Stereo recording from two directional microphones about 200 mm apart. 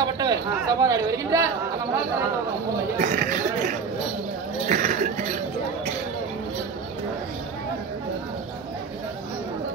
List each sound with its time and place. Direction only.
0.0 s speech: 20° right (ahead or behind)
3.0 s chatter: 40° right (ahead or behind)
4.6 s speech: 40° right (ahead or behind)